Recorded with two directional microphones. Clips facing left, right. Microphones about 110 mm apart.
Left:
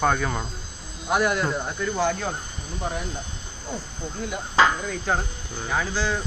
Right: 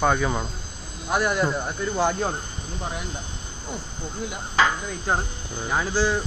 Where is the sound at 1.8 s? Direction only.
25° right (ahead or behind).